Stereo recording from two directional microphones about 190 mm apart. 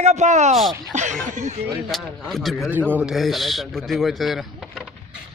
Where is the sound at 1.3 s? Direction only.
40° right (ahead or behind).